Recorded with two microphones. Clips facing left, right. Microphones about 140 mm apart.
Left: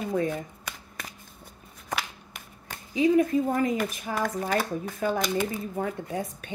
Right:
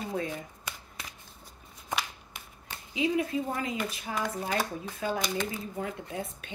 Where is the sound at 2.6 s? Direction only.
45° left (ahead or behind).